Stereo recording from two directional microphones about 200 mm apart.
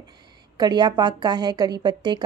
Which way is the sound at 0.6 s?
20° right (ahead or behind).